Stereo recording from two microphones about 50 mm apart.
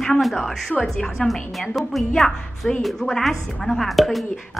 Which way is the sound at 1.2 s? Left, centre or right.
Centre.